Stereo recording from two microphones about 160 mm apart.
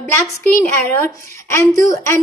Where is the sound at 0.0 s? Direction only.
15° left (ahead or behind).